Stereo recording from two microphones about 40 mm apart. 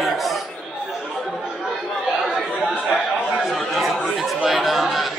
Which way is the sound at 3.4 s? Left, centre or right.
Centre.